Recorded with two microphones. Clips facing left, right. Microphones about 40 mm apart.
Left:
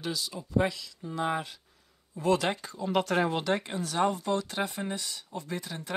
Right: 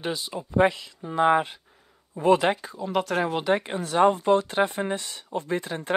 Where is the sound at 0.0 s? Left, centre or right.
Right.